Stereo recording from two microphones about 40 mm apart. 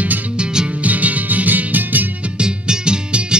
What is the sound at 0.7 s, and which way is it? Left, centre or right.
Music, right.